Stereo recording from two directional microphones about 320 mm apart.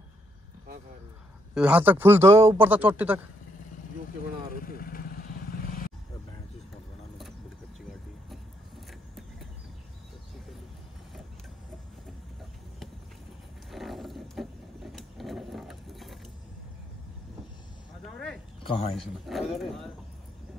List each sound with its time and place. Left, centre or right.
1.5 s a man's voice: centre
4.6 s vehicle: left
13.7 s mechanisms: centre
18.0 s a sound: centre
18.6 s a sound: centre
18.9 s a man's voice: centre